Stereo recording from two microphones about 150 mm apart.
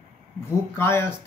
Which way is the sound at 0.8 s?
15° left (ahead or behind).